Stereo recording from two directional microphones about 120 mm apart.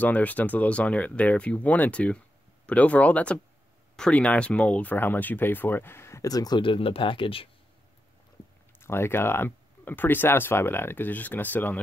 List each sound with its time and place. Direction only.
0.0 s speech: 15° left (ahead or behind); by 6.6 s 30° left (ahead or behind)
6.6 s speech: 45° left (ahead or behind)
8.7 s speech: 20° left (ahead or behind)